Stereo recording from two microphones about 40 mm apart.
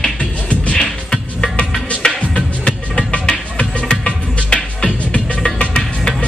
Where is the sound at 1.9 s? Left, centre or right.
Left.